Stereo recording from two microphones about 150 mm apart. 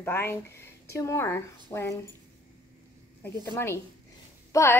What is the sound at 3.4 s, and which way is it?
A woman's voice, 15° left (ahead or behind).